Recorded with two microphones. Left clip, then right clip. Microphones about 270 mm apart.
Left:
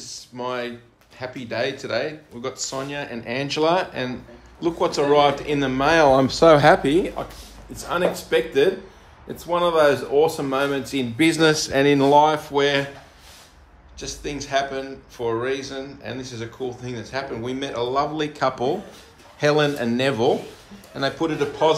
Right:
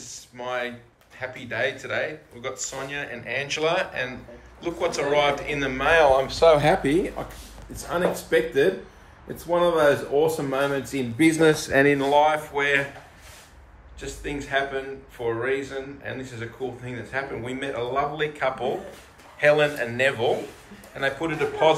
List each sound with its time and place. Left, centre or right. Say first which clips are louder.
0.0 s a sound: left 4 dB; centre
1.2 s speech: left 1 dB; centre
8.3 s speech: left 1 dB; centre
13.9 s a man's voice: left 2 dB; centre